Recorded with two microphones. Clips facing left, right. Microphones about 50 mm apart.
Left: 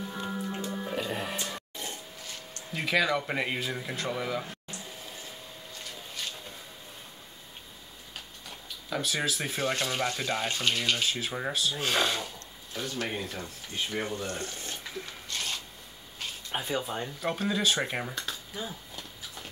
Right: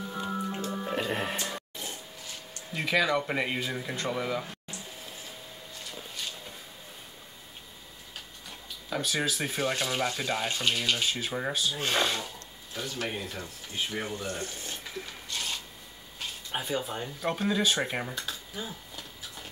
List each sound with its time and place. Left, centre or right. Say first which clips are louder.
0.0 s music: right 2 dB; centre
1.1 s a sound: right 2 dB; right
1.4 s a sound: right 1 dB; centre
2.7 s speech: even; centre
8.5 s speech: even; centre
14.0 s water: left 1 dB; centre
16.5 s speech: even; centre